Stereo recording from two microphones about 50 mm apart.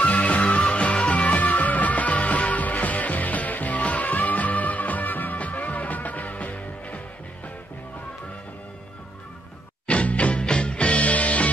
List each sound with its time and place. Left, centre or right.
0.0 s music: left
9.8 s music: left